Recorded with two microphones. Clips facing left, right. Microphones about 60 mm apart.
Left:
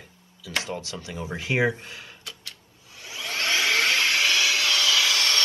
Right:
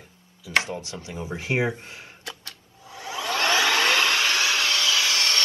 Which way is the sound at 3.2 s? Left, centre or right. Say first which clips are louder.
Right 4 dB; right.